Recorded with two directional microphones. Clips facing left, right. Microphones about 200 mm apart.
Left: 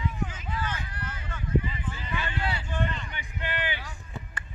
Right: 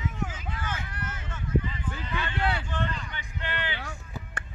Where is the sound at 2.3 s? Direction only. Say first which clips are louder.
Right 6 dB; 60° right (ahead or behind).